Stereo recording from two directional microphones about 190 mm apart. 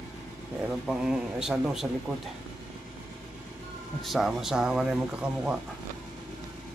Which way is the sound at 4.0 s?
Centre (ahead or behind).